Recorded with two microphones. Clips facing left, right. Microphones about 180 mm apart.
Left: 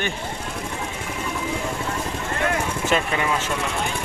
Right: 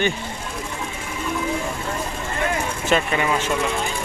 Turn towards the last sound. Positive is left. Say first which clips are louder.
# right 2 dB
turn(degrees=0)  # may be behind; listen again after turning